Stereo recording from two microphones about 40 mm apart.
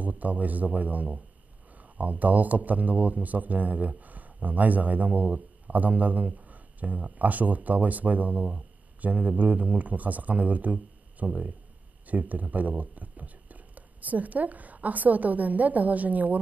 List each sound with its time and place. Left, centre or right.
0.0 s speech: right